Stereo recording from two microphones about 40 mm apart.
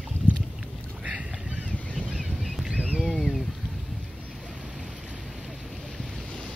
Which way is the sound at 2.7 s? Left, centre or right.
Right.